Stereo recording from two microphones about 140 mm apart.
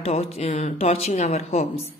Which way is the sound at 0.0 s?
45° left (ahead or behind).